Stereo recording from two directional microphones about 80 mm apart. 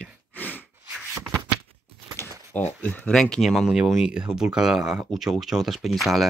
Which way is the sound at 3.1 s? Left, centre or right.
Centre.